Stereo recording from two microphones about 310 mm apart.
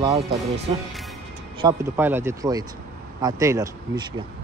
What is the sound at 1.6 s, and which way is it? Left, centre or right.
Speech, centre.